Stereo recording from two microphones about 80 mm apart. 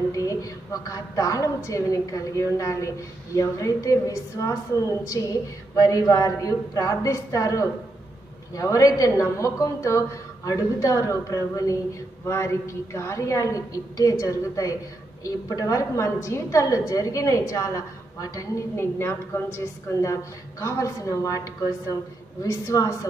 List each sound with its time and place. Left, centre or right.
0.1 s a woman's voice: left
18.8 s a woman's voice: left
22.4 s a woman's voice: left